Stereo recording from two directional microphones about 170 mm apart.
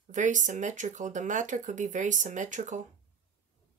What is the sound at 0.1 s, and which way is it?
Speech, 45° right (ahead or behind).